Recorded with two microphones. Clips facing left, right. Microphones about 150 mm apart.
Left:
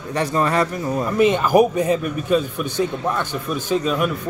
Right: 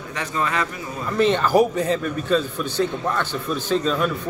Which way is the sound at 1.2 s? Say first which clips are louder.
Left 2 dB; 10° left (ahead or behind).